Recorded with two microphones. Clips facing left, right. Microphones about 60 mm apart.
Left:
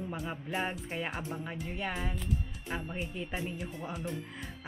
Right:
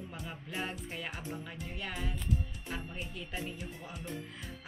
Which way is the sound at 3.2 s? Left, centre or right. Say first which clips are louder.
Left 2 dB; left.